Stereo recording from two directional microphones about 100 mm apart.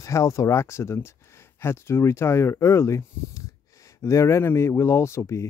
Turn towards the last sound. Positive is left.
turn(degrees=30)  # may be behind; listen again after turning